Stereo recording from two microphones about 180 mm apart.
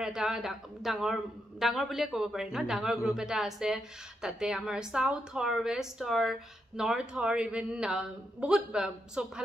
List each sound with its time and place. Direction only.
0.0 s a woman's voice: 5° right (ahead or behind)